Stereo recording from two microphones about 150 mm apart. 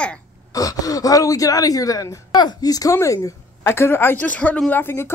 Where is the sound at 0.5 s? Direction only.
20° left (ahead or behind).